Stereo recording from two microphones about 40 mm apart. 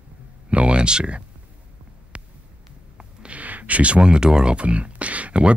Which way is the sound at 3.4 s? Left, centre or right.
Right.